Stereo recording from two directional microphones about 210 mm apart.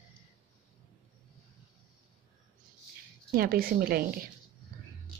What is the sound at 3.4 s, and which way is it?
Speech, 45° right (ahead or behind).